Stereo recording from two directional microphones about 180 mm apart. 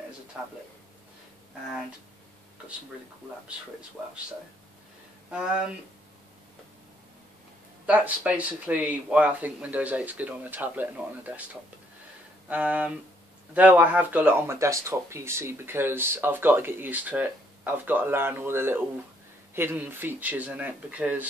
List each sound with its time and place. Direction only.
0.3 s speech: 10° right (ahead or behind)
4.0 s speech: 5° right (ahead or behind)
5.3 s speech: 5° right (ahead or behind)
7.8 s speech: 5° right (ahead or behind)